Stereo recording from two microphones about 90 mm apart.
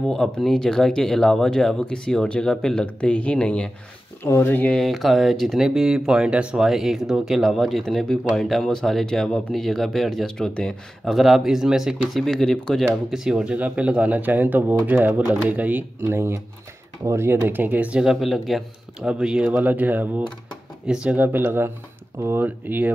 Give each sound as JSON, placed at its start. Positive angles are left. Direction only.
{"t": 0.1, "sound": "speech", "side_deg": 5}
{"t": 4.2, "sound": "speech", "side_deg": 25}
{"t": 4.7, "sound": "speech", "side_deg": 0}
{"t": 12.8, "sound": "a man's voice", "side_deg": -5}
{"t": 18.1, "sound": "a man's voice", "side_deg": 0}